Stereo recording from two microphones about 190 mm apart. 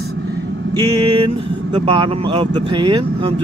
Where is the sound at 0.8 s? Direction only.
20° right (ahead or behind).